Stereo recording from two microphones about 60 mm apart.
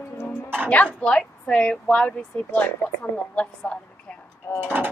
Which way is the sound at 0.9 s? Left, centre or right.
Centre.